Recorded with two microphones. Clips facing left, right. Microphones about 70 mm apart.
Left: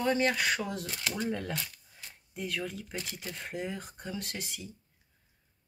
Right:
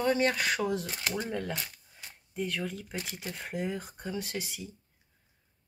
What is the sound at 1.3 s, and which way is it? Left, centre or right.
Speech, centre.